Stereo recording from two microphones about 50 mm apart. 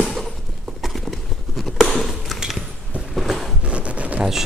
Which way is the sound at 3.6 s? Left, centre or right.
Right.